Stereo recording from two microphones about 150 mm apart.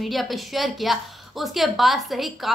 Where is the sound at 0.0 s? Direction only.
Centre (ahead or behind).